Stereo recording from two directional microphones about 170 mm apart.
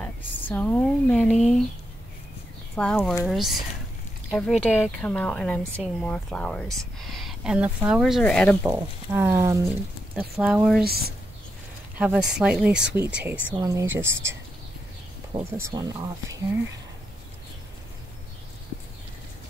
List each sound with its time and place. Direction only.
0.0 s speech: 10° left (ahead or behind)
2.7 s speech: 5° left (ahead or behind)
8.6 s speech: 15° right (ahead or behind)
10.1 s speech: 10° right (ahead or behind)
10.8 s speech: 65° right (ahead or behind)
12.0 s speech: 5° right (ahead or behind)
15.5 s speech: 20° right (ahead or behind)